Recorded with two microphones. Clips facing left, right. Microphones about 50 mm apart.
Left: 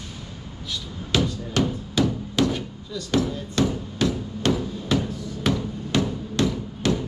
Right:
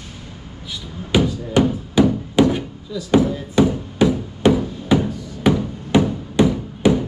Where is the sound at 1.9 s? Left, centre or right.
Centre.